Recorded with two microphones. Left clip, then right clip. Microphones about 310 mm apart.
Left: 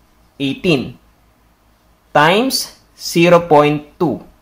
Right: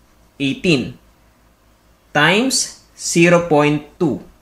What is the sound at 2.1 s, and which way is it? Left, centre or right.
Speech, centre.